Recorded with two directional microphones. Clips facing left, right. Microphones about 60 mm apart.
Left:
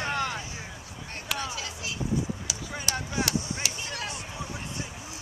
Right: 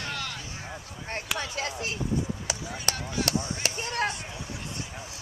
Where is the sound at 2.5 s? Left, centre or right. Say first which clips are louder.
Right 4 dB; right.